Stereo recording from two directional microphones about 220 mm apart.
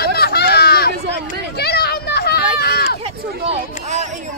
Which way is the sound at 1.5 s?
45° left (ahead or behind).